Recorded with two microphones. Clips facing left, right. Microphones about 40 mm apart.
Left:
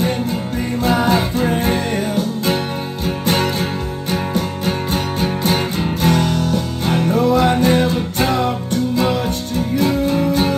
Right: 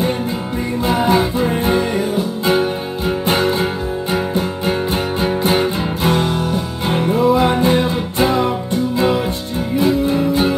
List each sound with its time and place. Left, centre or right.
0.8 s music: right
3.3 s music: right